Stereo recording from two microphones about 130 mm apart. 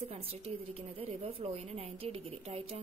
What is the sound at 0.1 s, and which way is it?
Speech, 50° right (ahead or behind).